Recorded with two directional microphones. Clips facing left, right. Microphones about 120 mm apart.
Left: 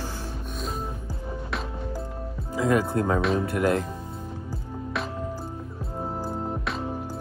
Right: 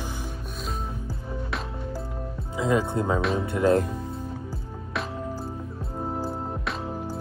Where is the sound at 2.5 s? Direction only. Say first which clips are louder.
Left 1 dB; 20° right (ahead or behind).